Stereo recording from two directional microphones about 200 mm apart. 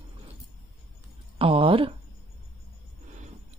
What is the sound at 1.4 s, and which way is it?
Speech, 25° right (ahead or behind).